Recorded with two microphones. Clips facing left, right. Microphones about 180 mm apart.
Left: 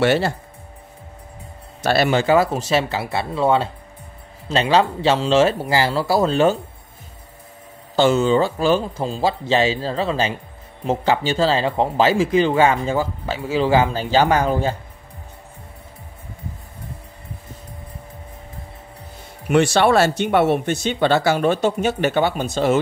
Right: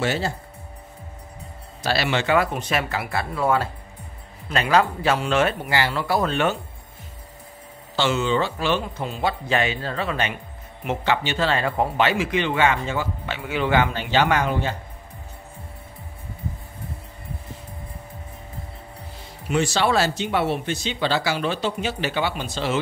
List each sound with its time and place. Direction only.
0.0 s speech: 65° left (ahead or behind)
1.9 s a man's voice: 45° left (ahead or behind)
7.9 s a man's voice: 40° left (ahead or behind); by 12.1 s 25° left (ahead or behind)
12.1 s a man's voice: 35° left (ahead or behind)
19.4 s speech: 60° left (ahead or behind)